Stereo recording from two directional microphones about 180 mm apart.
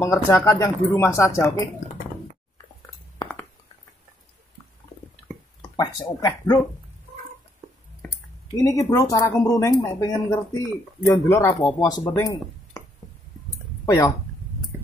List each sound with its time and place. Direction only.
0.0 s speech: 15° left (ahead or behind)
3.2 s cutlery: 25° left (ahead or behind)
5.8 s speech: 20° left (ahead or behind)
8.0 s a sound: 5° left (ahead or behind)
8.6 s speech: 20° left (ahead or behind)
13.8 s speech: 20° left (ahead or behind)